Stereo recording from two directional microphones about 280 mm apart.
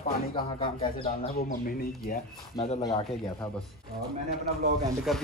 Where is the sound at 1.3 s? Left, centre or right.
Left.